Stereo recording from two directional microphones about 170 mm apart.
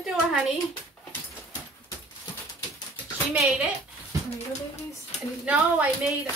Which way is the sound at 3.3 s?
5° right (ahead or behind).